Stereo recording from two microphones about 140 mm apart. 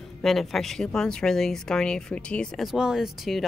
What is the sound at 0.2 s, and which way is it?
A woman's voice, centre (ahead or behind).